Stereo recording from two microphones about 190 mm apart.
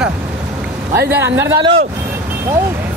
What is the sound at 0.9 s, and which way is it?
Speech, 15° right (ahead or behind).